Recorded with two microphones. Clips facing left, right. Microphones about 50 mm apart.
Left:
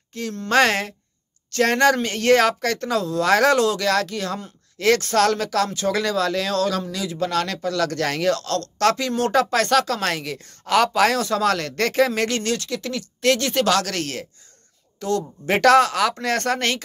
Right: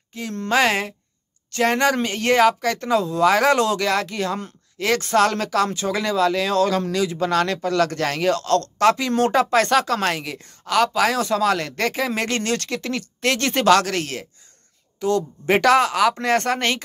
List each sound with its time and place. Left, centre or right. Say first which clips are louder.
0.1 s speech: left 1 dB; centre
3.5 s speech: even; right
3.8 s speech: even; centre
8.8 s speech: right 1 dB; centre
10.0 s speech: right 1 dB; centre
10.6 s speech: left 1 dB; centre
11.5 s speech: left 2 dB; centre
12.1 s speech: left 1 dB; right
12.5 s speech: right 2 dB; right
13.9 s speech: right 1 dB; centre